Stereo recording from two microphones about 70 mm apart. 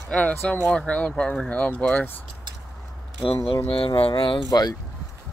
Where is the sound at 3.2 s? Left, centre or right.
Left.